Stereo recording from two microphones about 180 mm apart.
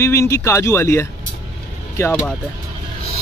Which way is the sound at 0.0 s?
15° left (ahead or behind).